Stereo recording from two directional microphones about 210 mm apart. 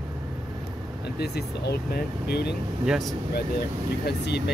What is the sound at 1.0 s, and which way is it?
Speech, 50° left (ahead or behind).